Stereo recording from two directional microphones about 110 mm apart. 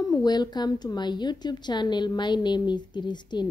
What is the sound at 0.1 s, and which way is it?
A woman's voice, 40° left (ahead or behind).